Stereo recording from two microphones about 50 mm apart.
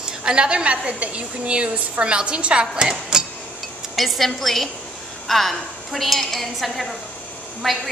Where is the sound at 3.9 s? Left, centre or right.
Centre.